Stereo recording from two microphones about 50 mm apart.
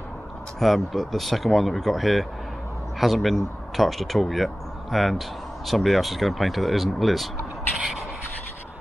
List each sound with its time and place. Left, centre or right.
0.6 s speech: centre
7.7 s sanding: centre